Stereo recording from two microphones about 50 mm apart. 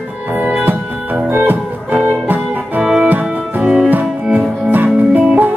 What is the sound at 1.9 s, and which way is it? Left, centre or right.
Music, right.